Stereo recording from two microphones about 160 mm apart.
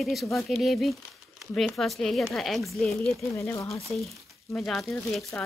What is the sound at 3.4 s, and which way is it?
Speech, 20° left (ahead or behind).